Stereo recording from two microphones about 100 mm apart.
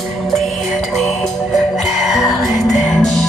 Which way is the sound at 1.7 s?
Centre (ahead or behind).